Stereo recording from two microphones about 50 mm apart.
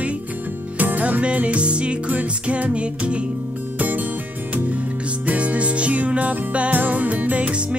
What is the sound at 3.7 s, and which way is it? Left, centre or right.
Music, right.